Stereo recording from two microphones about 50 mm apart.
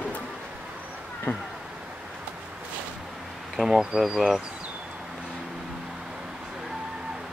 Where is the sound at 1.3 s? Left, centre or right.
Left.